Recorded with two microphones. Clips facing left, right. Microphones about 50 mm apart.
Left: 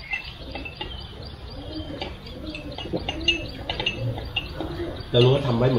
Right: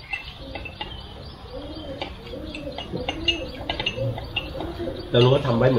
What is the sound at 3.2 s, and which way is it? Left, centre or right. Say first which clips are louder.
Bird: even; centre.